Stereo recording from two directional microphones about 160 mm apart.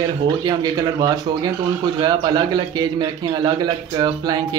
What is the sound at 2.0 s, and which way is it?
A man's voice, 25° right (ahead or behind).